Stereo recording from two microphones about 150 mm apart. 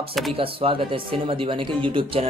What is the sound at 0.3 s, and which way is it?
Speech, 35° right (ahead or behind).